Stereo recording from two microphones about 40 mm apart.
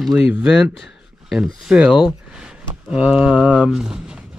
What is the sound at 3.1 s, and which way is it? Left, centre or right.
Speech, right.